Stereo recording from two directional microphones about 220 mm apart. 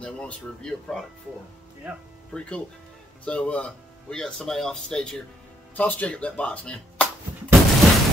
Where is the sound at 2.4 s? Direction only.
5° left (ahead or behind).